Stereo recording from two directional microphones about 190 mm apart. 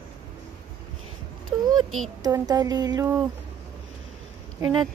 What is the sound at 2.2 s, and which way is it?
Speech, 20° right (ahead or behind).